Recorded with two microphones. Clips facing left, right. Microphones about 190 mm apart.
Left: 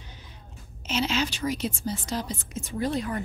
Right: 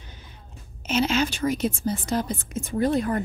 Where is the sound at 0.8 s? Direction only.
50° right (ahead or behind).